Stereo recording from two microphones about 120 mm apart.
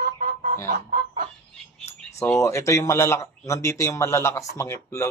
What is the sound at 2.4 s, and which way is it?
Speech, 25° left (ahead or behind).